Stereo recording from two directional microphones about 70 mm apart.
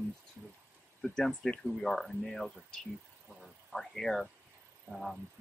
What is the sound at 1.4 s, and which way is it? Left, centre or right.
Speech, centre.